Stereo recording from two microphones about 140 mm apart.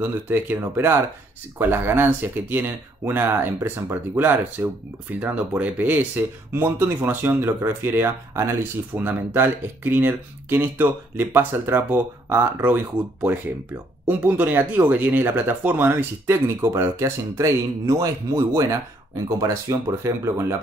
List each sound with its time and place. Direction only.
0.0 s speech: 15° right (ahead or behind)